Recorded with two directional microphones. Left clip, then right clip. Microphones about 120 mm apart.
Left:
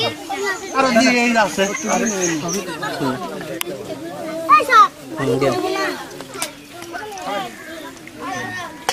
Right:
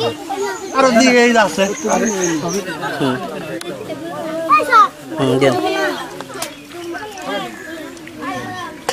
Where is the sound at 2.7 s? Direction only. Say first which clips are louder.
Right 4 dB; 10° left (ahead or behind).